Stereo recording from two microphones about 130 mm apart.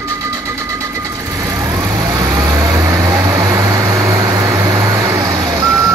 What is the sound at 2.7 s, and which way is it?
Vehicle, 25° right (ahead or behind).